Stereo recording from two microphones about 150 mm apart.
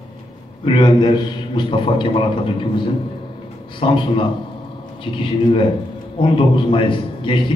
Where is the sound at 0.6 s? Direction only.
30° left (ahead or behind).